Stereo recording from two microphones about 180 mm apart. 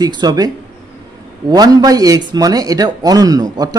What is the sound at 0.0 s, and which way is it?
Speech, 25° right (ahead or behind).